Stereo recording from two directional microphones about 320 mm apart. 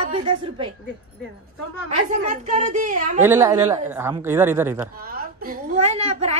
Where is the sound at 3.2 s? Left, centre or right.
Centre.